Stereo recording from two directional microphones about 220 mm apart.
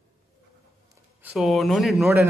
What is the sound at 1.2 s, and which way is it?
Speech, 5° right (ahead or behind).